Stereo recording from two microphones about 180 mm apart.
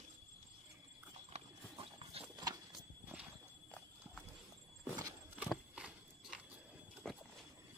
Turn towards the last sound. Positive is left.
turn(degrees=5)  # may be behind; listen again after turning